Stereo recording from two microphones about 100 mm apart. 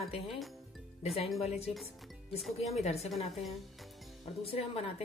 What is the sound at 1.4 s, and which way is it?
Speech, 90° left.